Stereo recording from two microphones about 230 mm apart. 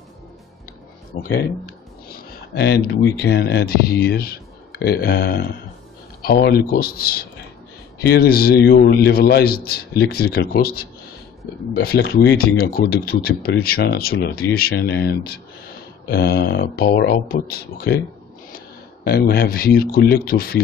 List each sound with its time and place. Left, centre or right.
1.1 s speech: left
16.1 s speech: left
19.0 s speech: left